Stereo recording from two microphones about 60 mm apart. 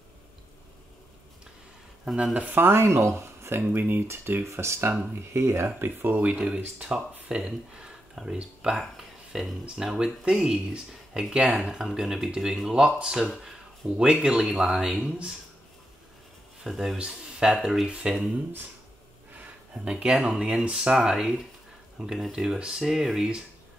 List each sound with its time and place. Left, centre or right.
2.3 s speech: right
2.6 s speech: right
3.7 s speech: right
4.4 s speech: right
5.8 s speech: right
6.3 s speech: centre
13.8 s speech: centre
16.6 s speech: centre
19.7 s speech: centre